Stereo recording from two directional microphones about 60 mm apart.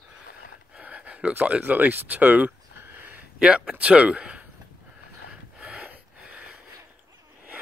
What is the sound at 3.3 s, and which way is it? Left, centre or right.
Speech, centre.